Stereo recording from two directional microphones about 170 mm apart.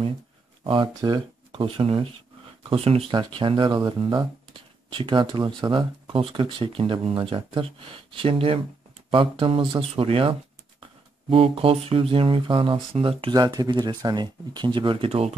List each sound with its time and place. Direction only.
0.7 s speech: 30° right (ahead or behind)